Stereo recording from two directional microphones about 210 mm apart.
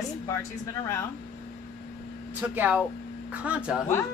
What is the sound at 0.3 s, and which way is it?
Speech, 15° left (ahead or behind).